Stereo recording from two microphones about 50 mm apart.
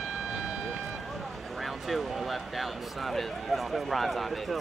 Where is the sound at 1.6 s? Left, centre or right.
Centre.